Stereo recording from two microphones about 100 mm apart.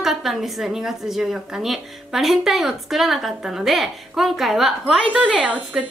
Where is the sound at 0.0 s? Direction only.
Centre (ahead or behind).